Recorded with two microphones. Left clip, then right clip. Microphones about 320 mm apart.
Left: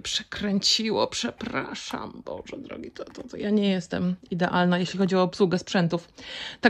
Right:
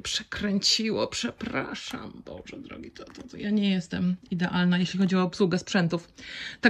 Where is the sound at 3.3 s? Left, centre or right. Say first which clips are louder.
Left 4 dB; centre.